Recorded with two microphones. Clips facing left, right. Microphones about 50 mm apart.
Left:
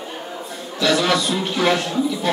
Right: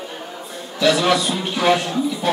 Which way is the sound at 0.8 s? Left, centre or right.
Centre.